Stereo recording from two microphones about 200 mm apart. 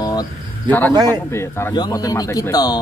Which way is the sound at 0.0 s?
20° left (ahead or behind).